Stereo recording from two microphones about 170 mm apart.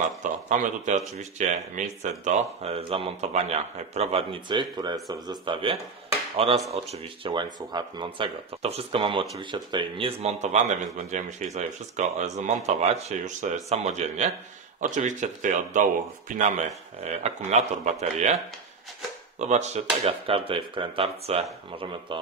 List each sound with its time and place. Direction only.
0.2 s speech: 50° right (ahead or behind)
19.3 s speech: 40° right (ahead or behind)